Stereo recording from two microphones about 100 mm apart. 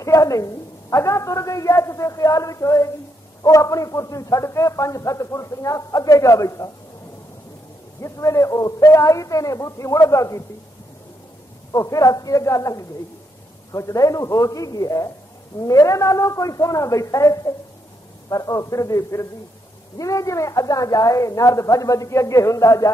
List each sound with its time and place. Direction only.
0.0 s a man's voice: 35° left (ahead or behind)
8.0 s a man's voice: 30° left (ahead or behind)
11.7 s a man's voice: 35° left (ahead or behind)